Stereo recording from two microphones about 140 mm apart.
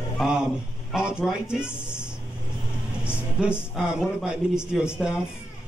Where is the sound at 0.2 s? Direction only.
5° right (ahead or behind).